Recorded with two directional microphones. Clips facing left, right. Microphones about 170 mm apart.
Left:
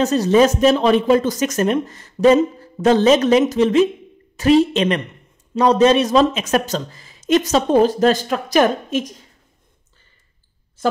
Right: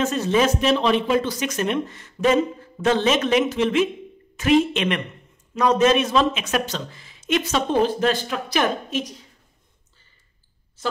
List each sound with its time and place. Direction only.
0.0 s speech: 40° left (ahead or behind)